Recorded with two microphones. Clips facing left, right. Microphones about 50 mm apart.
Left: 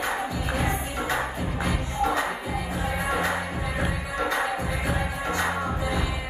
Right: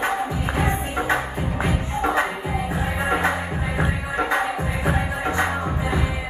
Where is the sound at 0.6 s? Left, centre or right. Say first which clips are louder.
Right 5 dB; right.